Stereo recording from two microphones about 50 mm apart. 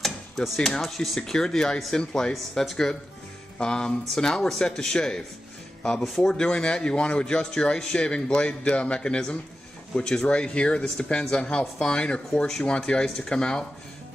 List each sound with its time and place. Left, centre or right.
0.6 s speech: centre
2.3 s speech: centre
3.5 s speech: centre
6.0 s speech: centre
6.3 s speech: centre